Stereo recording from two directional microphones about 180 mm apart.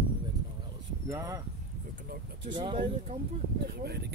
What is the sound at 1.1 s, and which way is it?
Speech, 15° right (ahead or behind).